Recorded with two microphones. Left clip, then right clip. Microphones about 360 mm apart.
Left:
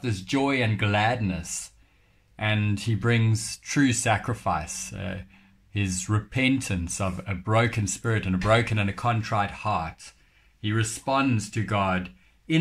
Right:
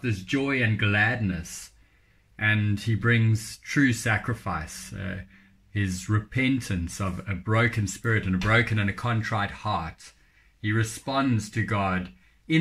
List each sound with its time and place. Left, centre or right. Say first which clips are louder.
0.0 s speech: left 2 dB; centre